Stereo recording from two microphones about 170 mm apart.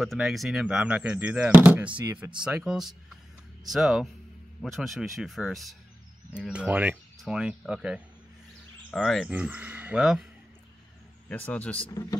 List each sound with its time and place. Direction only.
0.0 s speech: centre (ahead or behind)
9.3 s speech: 10° right (ahead or behind)
11.2 s speech: 10° left (ahead or behind)
11.9 s speech: 20° left (ahead or behind)